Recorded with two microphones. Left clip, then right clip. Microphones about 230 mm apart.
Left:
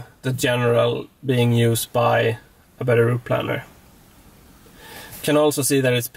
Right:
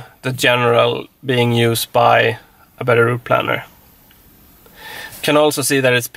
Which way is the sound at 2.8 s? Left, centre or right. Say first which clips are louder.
Right 5 dB; centre.